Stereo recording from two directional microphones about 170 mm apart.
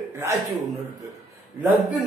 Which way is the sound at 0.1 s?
15° right (ahead or behind).